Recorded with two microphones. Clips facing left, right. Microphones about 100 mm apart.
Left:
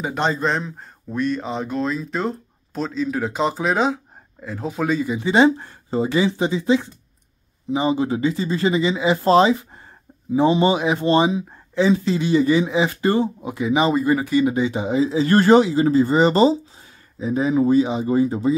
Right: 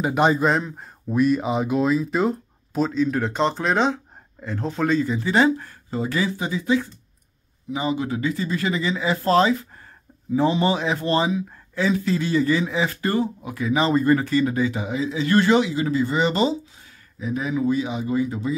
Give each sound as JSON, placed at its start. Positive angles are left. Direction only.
{"t": 0.0, "sound": "speech", "side_deg": -10}